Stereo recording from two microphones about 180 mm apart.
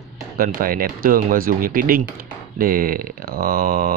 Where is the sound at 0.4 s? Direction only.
50° right (ahead or behind).